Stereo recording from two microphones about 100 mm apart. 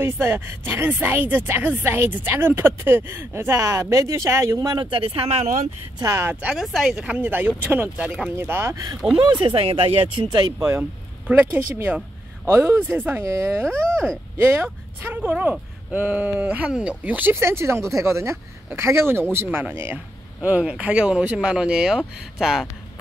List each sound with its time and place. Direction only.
0.0 s a woman's voice: 25° right (ahead or behind)
4.6 s speech: 45° right (ahead or behind); by 5.4 s 70° right (ahead or behind)
5.9 s speech: 35° right (ahead or behind)
6.5 s a woman's voice: 5° right (ahead or behind); by 8.7 s 25° right (ahead or behind)
9.1 s speech: 55° right (ahead or behind)
10.2 s a woman's voice: 35° right (ahead or behind)
11.2 s a woman's voice: 20° right (ahead or behind)